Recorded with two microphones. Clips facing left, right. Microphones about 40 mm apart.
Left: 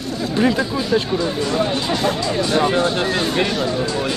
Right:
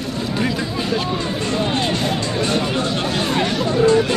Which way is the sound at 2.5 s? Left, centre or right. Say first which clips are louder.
Left 3 dB; left.